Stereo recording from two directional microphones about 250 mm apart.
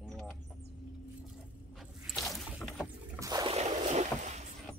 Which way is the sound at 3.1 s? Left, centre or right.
Centre.